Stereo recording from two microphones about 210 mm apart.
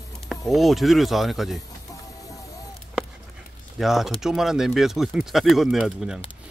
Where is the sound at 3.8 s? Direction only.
Centre (ahead or behind).